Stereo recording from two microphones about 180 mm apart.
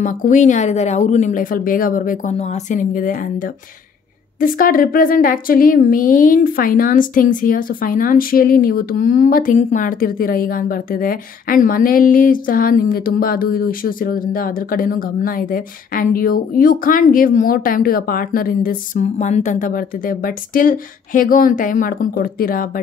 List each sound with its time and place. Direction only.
0.0 s a woman's voice: 45° left (ahead or behind)
2.3 s a woman's voice: 40° left (ahead or behind)